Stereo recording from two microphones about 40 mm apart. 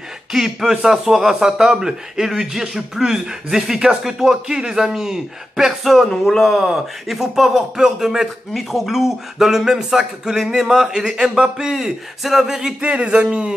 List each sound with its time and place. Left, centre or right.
0.3 s speech: centre
12.8 s speech: right